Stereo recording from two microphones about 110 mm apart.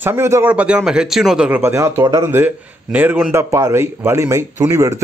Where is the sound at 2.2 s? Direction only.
15° right (ahead or behind).